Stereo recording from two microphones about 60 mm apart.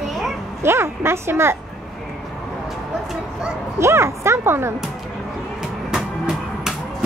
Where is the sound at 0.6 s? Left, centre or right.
Right.